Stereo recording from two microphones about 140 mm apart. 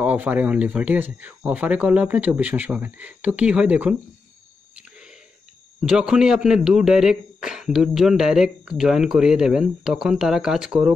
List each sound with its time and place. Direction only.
0.0 s speech: 10° right (ahead or behind)
5.8 s a man's voice: 5° right (ahead or behind)